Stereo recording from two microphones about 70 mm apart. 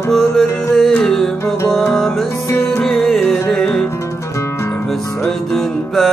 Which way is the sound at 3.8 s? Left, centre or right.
Left.